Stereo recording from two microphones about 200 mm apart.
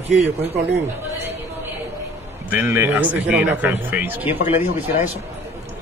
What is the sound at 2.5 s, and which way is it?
Speech, 10° right (ahead or behind).